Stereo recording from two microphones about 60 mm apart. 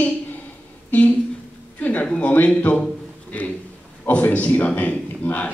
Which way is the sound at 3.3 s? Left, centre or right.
Left.